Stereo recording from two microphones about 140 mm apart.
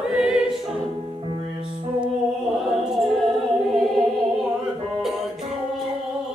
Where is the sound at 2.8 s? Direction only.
Centre (ahead or behind).